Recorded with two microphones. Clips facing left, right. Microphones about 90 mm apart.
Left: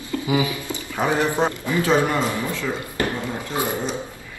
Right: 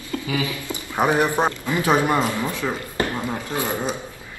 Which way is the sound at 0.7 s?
20° right (ahead or behind).